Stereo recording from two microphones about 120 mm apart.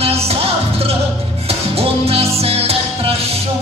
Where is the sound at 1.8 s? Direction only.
55° right (ahead or behind).